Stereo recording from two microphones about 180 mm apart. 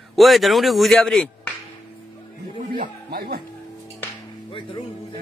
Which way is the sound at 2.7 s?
55° right (ahead or behind).